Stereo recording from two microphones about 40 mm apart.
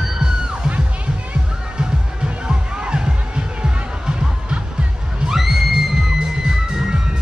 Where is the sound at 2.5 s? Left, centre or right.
Right.